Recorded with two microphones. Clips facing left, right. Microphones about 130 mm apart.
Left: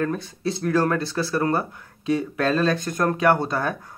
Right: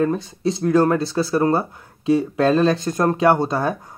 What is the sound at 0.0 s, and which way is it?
Speech, 20° right (ahead or behind).